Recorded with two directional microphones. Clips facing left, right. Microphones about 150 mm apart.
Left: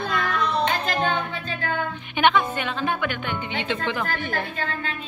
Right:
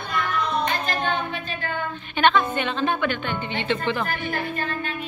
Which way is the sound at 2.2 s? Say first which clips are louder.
Right 1 dB; 15° left (ahead or behind).